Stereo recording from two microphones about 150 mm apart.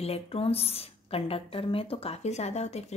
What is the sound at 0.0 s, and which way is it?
A woman's voice, 40° left (ahead or behind).